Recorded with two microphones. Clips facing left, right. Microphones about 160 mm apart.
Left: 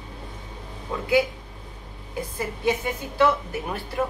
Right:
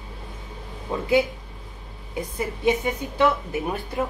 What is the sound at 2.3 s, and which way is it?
A woman's voice, 20° right (ahead or behind).